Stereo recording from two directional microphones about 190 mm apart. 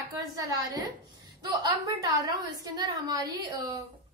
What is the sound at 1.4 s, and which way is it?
A woman's voice, 20° right (ahead or behind).